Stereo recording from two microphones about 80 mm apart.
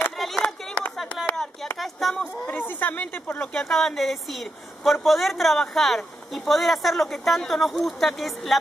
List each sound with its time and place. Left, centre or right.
0.2 s a sound: centre
1.8 s speech: centre
2.6 s speech: left
3.3 s speech: centre